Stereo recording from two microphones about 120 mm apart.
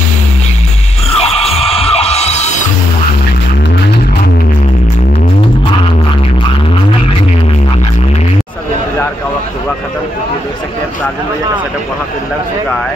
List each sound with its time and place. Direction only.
1.2 s music: 55° left (ahead or behind)